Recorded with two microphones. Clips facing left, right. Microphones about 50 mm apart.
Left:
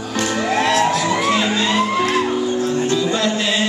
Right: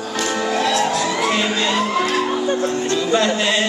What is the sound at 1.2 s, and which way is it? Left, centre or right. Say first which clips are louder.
Crowd: left 1 dB; centre.